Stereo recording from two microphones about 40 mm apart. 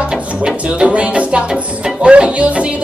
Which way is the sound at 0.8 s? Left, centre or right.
Right.